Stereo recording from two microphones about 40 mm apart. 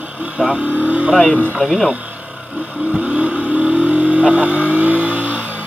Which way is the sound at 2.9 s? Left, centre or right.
Right.